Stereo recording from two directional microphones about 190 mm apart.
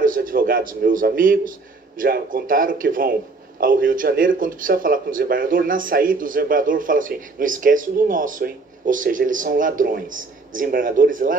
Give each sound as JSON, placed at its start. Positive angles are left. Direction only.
{"t": 0.0, "sound": "a man's voice", "side_deg": -45}